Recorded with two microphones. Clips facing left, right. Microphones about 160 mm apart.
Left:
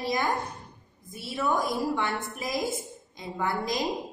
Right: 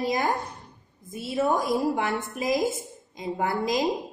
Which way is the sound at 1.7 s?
Centre (ahead or behind).